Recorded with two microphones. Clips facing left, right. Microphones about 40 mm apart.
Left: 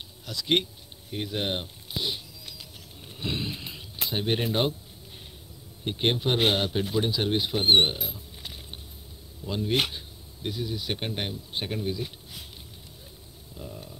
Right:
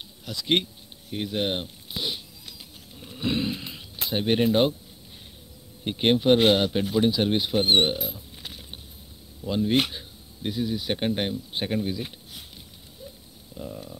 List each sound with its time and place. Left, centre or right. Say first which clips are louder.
0.3 s a man's voice: right 1 dB; centre
1.1 s speech: right 3 dB; centre
3.1 s a sound: right 5 dB; centre
5.9 s a man's voice: right 6 dB; centre
7.6 s speech: left 2 dB; centre
7.9 s rodents: right 5 dB; centre
9.4 s a man's voice: right 4 dB; centre
13.6 s a man's voice: right 4 dB; centre